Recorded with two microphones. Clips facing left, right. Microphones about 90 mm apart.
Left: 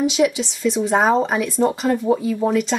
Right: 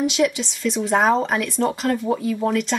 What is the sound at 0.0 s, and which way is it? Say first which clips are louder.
Speech: left 2 dB; 5° left (ahead or behind).